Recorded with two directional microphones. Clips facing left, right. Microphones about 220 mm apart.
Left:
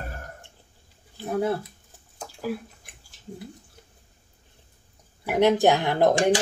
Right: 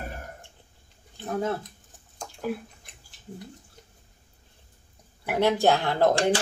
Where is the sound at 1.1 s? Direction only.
10° left (ahead or behind).